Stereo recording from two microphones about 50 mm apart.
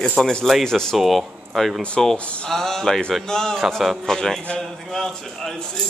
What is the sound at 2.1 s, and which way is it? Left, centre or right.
Speech, left.